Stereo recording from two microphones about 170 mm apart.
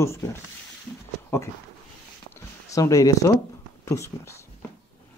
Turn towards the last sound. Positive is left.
turn(degrees=15)  # may be behind; listen again after turning